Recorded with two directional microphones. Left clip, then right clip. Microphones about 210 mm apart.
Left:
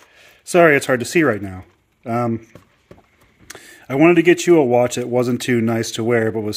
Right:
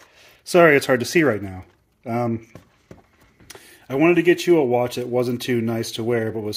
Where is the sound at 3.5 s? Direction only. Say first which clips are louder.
Left 3 dB; 35° left (ahead or behind).